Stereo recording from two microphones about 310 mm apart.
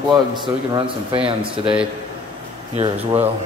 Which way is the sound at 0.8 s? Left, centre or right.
Centre.